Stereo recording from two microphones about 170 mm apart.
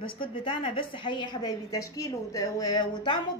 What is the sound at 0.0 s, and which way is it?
A woman's voice, 30° left (ahead or behind).